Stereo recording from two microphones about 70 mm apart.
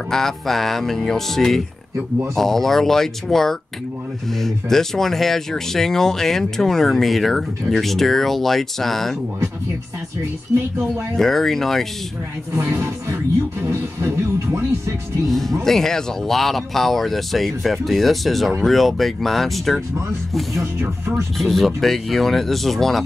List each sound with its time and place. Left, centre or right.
0.1 s speech: centre
10.5 s speech: right
11.1 s speech: centre
12.5 s speech: right
15.2 s speech: centre
21.4 s speech: centre